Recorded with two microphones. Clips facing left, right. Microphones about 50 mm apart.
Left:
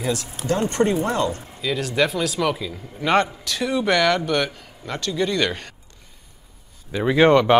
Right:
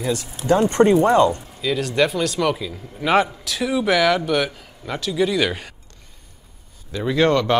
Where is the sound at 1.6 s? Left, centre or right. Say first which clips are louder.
Right 2 dB; centre.